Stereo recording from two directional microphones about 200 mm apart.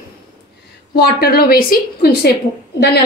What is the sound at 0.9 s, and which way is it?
A woman's voice, 50° left (ahead or behind).